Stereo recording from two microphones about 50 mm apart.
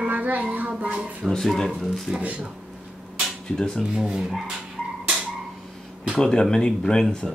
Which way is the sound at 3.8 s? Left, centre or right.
Centre.